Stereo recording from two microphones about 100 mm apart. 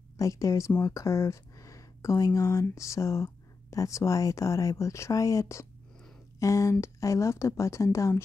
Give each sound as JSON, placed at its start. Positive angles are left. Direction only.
{"t": 0.2, "sound": "speech", "side_deg": 35}